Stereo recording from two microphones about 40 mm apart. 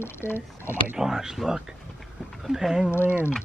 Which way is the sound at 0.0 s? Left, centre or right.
Left.